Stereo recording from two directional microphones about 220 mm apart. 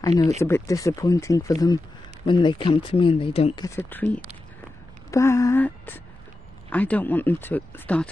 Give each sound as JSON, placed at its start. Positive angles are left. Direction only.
{"t": 0.4, "sound": "speech", "side_deg": 10}
{"t": 3.6, "sound": "speech", "side_deg": 10}